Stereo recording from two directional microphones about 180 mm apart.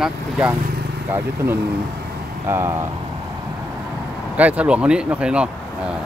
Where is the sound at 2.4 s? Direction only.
15° right (ahead or behind).